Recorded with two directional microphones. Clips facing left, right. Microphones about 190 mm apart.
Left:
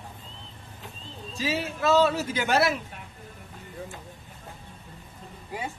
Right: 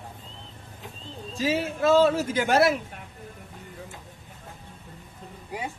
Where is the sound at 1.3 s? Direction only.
50° right (ahead or behind).